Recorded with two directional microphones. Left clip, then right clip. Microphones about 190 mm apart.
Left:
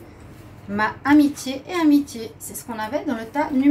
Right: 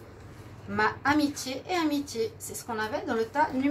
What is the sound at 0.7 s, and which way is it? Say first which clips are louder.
A woman's voice: left 7 dB; 45° right (ahead or behind).